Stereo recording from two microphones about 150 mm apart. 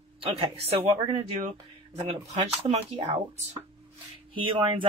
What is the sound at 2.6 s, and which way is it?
Speech, 40° right (ahead or behind).